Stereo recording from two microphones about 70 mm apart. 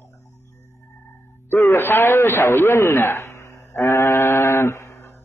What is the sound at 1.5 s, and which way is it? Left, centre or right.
A man's voice, left.